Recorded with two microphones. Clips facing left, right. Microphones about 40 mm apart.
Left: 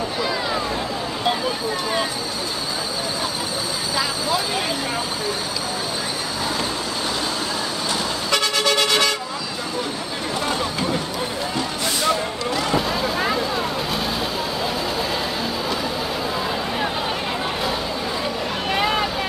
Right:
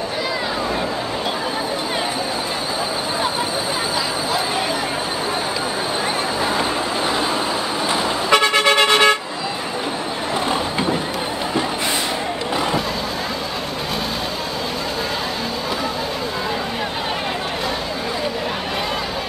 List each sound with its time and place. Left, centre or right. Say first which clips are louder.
7.9 s vehicle: right 7 dB; right